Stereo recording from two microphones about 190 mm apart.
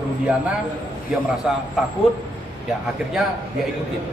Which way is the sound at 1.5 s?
Centre (ahead or behind).